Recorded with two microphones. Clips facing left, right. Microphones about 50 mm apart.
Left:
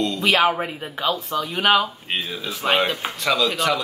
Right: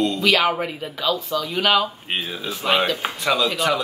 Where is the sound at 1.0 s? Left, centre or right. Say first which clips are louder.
Even; left.